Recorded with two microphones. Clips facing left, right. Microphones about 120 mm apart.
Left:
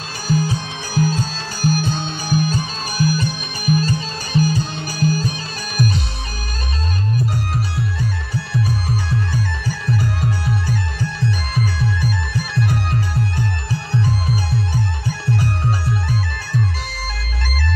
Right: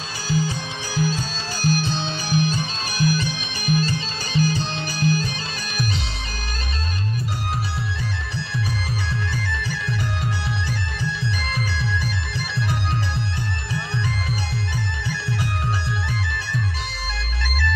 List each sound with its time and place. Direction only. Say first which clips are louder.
0.3 s music: left 4 dB; 50° left (ahead or behind)
8.8 s music: left 5 dB; 45° left (ahead or behind)
13.7 s music: left 5 dB; 40° left (ahead or behind)